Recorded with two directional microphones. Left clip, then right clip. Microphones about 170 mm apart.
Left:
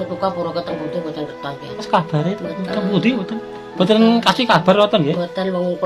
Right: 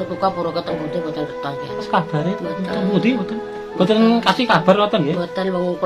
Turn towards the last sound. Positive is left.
turn(degrees=-10)  # may be behind; listen again after turning